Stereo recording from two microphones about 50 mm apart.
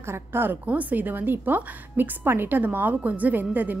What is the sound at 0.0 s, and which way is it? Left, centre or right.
Speech, right.